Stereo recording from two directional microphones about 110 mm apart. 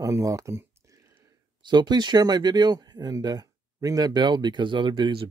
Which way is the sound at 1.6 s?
40° right (ahead or behind).